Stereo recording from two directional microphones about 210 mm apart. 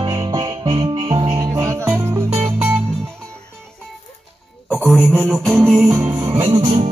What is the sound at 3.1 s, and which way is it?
Music, 5° left (ahead or behind).